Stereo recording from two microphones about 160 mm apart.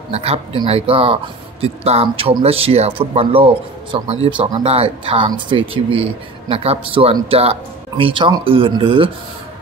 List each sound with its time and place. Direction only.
0.1 s speech: 40° right (ahead or behind)